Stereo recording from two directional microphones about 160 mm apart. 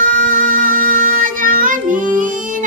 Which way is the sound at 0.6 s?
60° right (ahead or behind).